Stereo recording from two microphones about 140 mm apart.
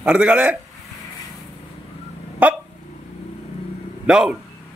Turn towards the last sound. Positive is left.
turn(degrees=-5)  # may be behind; listen again after turning